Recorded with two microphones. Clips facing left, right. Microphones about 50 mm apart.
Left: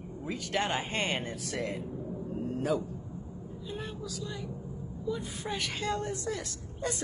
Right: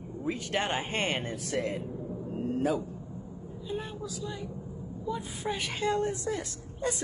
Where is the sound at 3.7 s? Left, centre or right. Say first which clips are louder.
Right 3 dB; centre.